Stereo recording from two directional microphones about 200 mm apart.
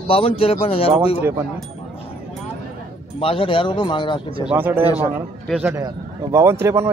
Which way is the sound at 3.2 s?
25° left (ahead or behind).